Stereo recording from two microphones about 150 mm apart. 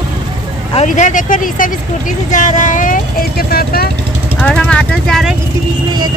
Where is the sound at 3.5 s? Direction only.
90° left.